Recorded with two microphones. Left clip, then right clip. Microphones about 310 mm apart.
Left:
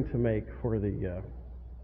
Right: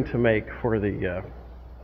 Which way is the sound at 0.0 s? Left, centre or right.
Centre.